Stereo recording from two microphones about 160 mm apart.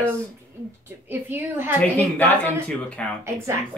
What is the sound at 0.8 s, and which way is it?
Speech, 15° right (ahead or behind).